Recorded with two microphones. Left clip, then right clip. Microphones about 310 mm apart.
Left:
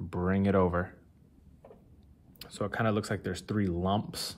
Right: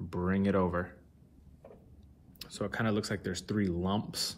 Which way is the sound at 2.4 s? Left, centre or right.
Left.